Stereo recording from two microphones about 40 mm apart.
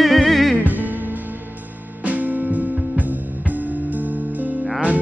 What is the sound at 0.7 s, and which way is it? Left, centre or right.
Music, right.